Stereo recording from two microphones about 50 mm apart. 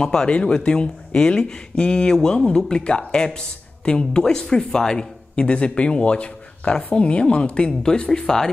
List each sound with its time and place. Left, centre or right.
0.0 s speech: centre